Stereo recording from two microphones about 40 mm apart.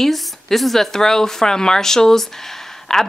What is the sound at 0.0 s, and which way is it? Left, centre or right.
A woman's voice, centre.